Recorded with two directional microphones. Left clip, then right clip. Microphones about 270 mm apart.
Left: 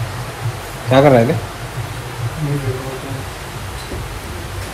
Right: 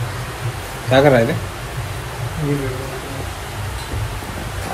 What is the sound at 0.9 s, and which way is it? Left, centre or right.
Speech, left.